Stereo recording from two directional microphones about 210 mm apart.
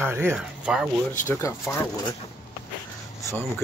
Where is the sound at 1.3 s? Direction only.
10° left (ahead or behind).